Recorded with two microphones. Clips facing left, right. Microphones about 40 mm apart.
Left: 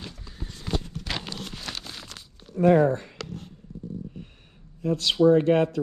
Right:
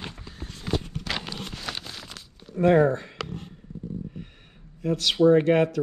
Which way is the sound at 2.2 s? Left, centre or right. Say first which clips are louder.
Right 1 dB; centre.